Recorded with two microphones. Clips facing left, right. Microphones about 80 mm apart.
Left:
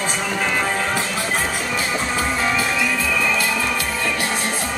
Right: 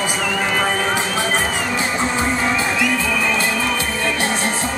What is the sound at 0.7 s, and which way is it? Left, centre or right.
Music, centre.